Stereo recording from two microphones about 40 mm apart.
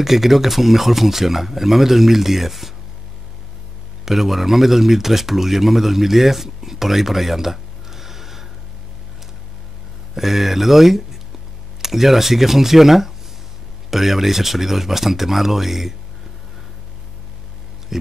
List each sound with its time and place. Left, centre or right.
0.0 s speech: centre
4.0 s speech: centre
10.1 s speech: centre